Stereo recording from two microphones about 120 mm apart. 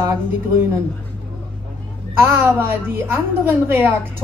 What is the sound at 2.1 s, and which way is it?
A woman's voice, 20° right (ahead or behind).